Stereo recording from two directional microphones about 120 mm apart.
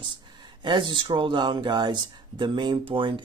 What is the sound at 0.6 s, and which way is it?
Speech, 40° right (ahead or behind).